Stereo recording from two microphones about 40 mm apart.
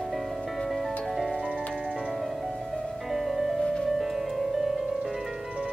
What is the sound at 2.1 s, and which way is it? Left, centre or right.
Music, centre.